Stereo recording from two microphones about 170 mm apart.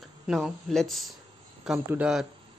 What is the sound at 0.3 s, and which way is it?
Speech, centre (ahead or behind).